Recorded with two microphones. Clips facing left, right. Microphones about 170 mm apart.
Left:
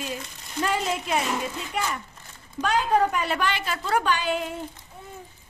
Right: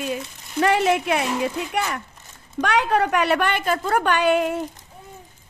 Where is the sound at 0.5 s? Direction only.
70° right (ahead or behind).